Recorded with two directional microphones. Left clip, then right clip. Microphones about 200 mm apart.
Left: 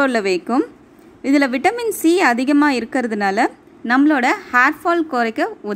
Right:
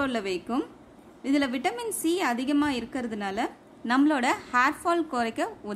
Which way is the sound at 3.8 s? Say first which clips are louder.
Left 9 dB; 20° left (ahead or behind).